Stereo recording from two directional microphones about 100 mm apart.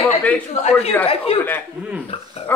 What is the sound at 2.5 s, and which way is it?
Speech, 20° left (ahead or behind).